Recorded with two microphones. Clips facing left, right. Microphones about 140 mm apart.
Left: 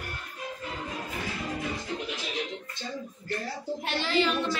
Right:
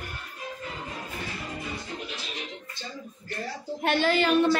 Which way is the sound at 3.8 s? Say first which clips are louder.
Right 5 dB; 55° right (ahead or behind).